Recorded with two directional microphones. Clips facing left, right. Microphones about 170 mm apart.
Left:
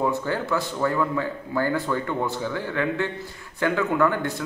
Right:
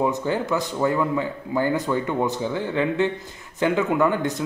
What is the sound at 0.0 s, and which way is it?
Speech, 15° right (ahead or behind).